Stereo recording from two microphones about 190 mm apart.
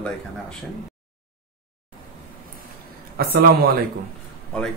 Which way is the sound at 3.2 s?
55° right (ahead or behind).